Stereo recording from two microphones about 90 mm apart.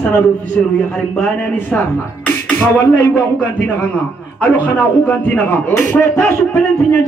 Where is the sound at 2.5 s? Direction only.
15° left (ahead or behind).